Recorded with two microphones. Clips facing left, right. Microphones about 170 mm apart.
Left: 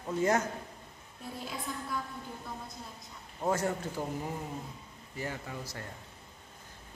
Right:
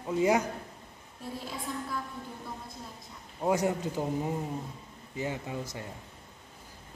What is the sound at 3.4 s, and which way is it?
Speech, 15° right (ahead or behind).